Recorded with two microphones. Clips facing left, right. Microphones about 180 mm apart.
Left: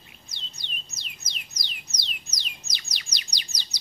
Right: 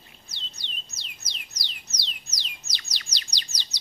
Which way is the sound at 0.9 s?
15° left (ahead or behind).